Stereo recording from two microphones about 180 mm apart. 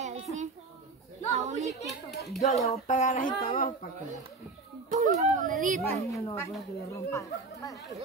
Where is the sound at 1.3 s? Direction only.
40° right (ahead or behind).